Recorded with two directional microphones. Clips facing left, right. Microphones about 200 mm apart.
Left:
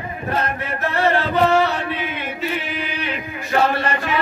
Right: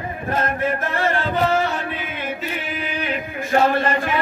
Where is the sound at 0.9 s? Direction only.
45° right (ahead or behind).